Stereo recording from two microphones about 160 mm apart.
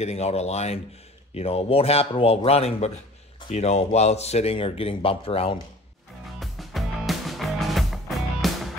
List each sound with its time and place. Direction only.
0.0 s speech: 40° left (ahead or behind)
6.4 s music: centre (ahead or behind)